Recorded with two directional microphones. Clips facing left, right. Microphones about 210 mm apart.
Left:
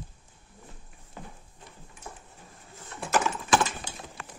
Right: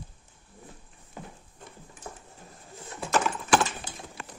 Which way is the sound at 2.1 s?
45° right (ahead or behind).